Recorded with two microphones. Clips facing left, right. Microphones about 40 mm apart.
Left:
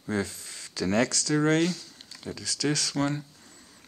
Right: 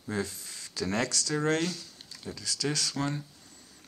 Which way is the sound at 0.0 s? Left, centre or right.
Left.